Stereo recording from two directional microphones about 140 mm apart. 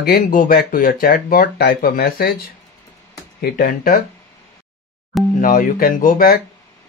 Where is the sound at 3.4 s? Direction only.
90° left.